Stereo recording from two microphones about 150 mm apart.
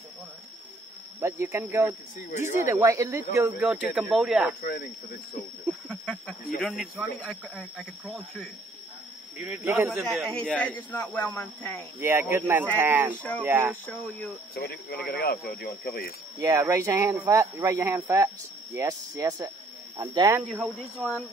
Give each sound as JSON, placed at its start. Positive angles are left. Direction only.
{"t": 1.2, "sound": "speech", "side_deg": -15}
{"t": 2.3, "sound": "speech", "side_deg": 55}
{"t": 2.7, "sound": "speech", "side_deg": -20}
{"t": 4.6, "sound": "speech", "side_deg": 80}
{"t": 6.6, "sound": "speech", "side_deg": 0}
{"t": 9.7, "sound": "speech", "side_deg": -15}
{"t": 10.0, "sound": "speech", "side_deg": 5}
{"t": 12.0, "sound": "speech", "side_deg": -15}
{"t": 14.5, "sound": "speech", "side_deg": 90}
{"t": 16.3, "sound": "speech", "side_deg": -25}
{"t": 20.4, "sound": "speech", "side_deg": 0}